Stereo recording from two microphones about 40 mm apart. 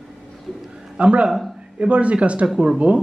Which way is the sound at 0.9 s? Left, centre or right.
Right.